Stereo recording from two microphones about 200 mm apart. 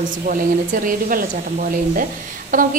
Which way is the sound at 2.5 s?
45° right (ahead or behind).